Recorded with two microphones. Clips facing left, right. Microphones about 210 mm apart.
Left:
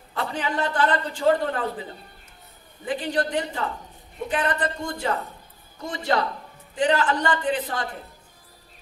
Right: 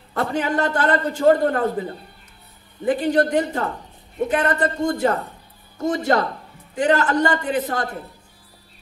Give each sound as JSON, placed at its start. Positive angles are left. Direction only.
{"t": 0.1, "sound": "a man's voice", "side_deg": -45}